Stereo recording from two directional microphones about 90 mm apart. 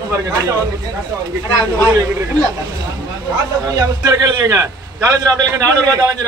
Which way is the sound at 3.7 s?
45° right (ahead or behind).